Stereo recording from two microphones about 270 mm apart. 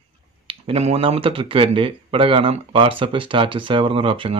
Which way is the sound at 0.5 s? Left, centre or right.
Right.